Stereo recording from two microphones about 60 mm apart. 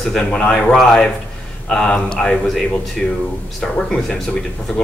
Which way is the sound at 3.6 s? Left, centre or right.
Centre.